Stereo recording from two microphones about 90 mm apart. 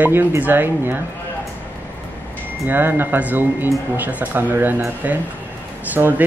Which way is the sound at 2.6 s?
25° right (ahead or behind).